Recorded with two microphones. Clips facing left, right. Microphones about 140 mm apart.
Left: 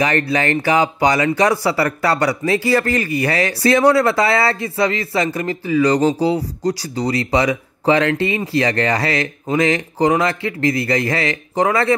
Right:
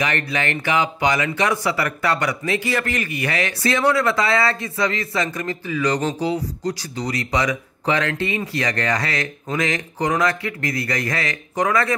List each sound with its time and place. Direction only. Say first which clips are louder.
0.0 s speech: left 6 dB; 35° left (ahead or behind)